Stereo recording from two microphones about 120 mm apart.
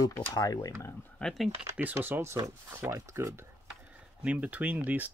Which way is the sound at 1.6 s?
15° right (ahead or behind).